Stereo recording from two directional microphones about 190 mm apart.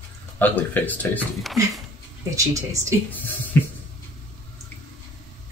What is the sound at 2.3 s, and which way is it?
Speech, 15° right (ahead or behind).